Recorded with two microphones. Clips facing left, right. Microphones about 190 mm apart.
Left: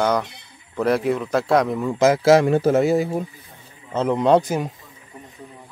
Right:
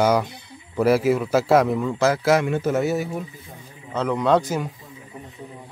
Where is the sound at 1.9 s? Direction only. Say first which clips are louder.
Left 6 dB; 20° left (ahead or behind).